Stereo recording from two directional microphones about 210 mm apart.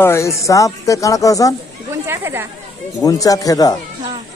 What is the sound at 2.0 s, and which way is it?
Speech, 10° right (ahead or behind).